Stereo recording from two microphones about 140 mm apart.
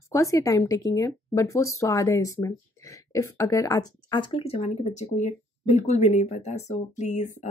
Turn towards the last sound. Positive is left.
turn(degrees=60)  # may be behind; listen again after turning